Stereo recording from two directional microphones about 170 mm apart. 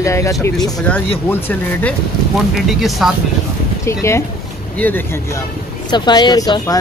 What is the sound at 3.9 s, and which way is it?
Speech, 15° left (ahead or behind).